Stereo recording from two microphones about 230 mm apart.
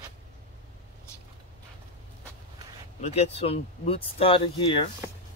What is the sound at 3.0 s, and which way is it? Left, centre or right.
Speech, left.